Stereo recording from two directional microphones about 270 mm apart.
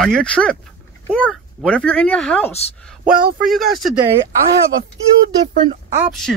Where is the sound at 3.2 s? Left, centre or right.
Right.